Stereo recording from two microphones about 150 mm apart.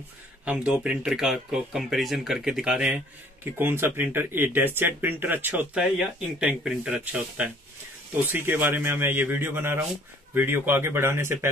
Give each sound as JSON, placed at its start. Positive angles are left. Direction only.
{"t": 0.5, "sound": "speech", "side_deg": -5}